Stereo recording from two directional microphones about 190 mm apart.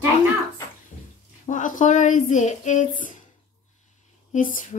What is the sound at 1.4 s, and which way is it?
Speech, 40° left (ahead or behind).